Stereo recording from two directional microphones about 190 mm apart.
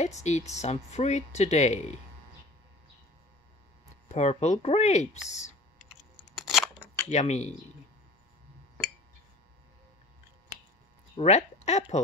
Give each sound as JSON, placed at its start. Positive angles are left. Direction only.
{"t": 0.0, "sound": "speech", "side_deg": 35}
{"t": 4.1, "sound": "speech", "side_deg": 35}
{"t": 6.3, "sound": "scissors", "side_deg": 0}
{"t": 7.1, "sound": "speech", "side_deg": 35}
{"t": 11.1, "sound": "speech", "side_deg": 35}